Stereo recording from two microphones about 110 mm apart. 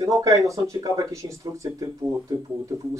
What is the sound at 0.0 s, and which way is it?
Speech, 30° right (ahead or behind).